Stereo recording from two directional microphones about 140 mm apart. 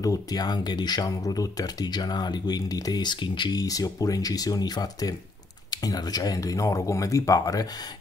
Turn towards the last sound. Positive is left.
turn(degrees=25)  # may be behind; listen again after turning